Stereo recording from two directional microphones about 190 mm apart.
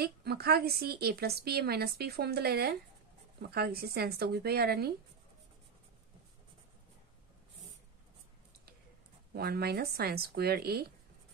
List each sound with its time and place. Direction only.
0.0 s a woman's voice: 55° right (ahead or behind)
9.3 s a woman's voice: 55° right (ahead or behind)